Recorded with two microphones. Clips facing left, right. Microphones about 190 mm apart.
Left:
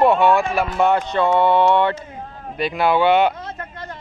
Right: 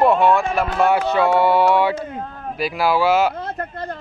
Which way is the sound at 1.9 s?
60° right (ahead or behind).